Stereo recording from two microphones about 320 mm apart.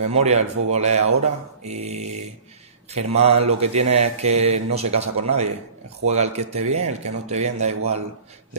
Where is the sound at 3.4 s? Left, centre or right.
Centre.